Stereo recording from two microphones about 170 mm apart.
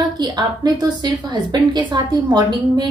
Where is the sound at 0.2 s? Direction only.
25° right (ahead or behind).